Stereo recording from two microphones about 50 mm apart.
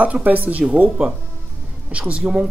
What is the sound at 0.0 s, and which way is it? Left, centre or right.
Speech, right.